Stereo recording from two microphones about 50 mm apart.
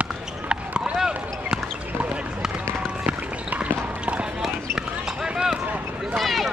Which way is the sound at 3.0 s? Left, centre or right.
Right.